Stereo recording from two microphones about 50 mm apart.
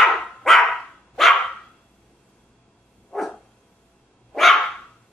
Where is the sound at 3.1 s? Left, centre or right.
Centre.